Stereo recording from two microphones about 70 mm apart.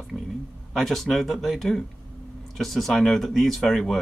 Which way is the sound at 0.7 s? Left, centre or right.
Centre.